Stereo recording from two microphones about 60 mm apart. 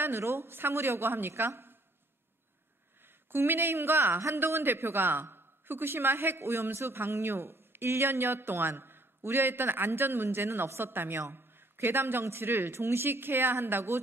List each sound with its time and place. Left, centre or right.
0.0 s a woman's voice: right
3.3 s a woman's voice: right